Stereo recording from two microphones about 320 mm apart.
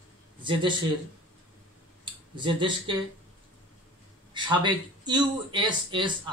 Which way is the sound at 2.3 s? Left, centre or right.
Centre.